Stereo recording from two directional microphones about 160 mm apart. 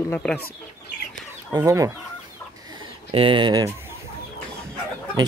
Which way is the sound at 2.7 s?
30° right (ahead or behind).